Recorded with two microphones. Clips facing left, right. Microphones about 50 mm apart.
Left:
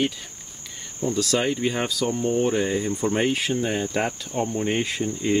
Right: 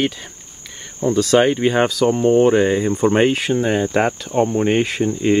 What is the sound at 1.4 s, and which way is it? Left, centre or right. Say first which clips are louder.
Speech: right 9 dB; right.